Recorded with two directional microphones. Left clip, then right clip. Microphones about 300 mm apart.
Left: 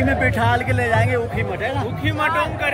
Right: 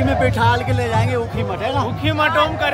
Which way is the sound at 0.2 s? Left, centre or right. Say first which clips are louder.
Right 2 dB; centre.